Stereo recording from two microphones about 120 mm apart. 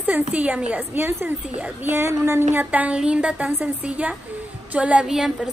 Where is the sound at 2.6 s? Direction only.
10° right (ahead or behind).